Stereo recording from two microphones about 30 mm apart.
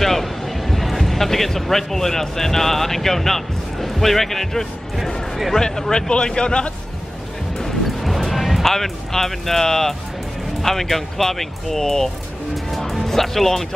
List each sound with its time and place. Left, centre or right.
0.0 s speech: centre
5.6 s speech: left
8.0 s music: centre
8.6 s speech: centre
12.7 s speech: centre